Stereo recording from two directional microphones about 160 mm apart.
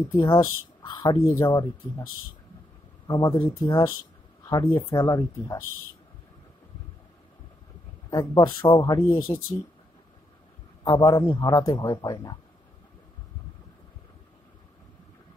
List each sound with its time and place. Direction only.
0.1 s speech: 25° left (ahead or behind)
3.1 s speech: 25° left (ahead or behind)
8.1 s speech: 25° left (ahead or behind)
10.8 s speech: 25° left (ahead or behind)